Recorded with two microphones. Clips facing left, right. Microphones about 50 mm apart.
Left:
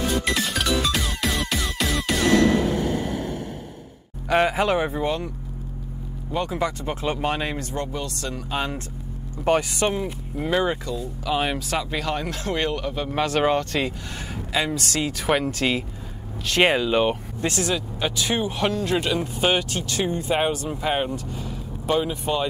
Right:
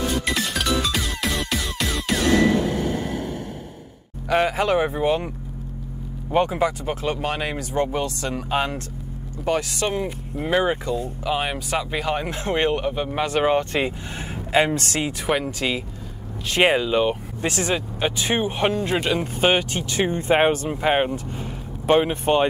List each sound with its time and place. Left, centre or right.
0.2 s music: centre
4.3 s speech: centre
6.3 s speech: right
6.6 s speech: centre
7.0 s speech: centre
8.0 s speech: centre
9.4 s speech: left
10.4 s speech: centre
13.1 s speech: centre
13.6 s speech: right
14.5 s speech: right
15.2 s speech: centre
16.4 s speech: centre
17.4 s speech: centre; by 22.5 s right